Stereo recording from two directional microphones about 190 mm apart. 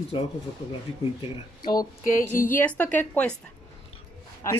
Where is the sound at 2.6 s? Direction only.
10° left (ahead or behind).